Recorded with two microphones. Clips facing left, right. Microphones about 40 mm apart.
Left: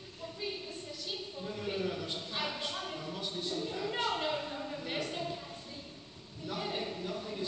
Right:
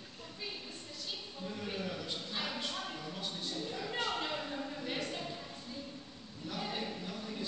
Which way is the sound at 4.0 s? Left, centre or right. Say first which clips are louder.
Left 2 dB; centre.